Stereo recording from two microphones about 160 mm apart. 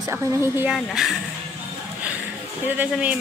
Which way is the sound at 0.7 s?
Centre (ahead or behind).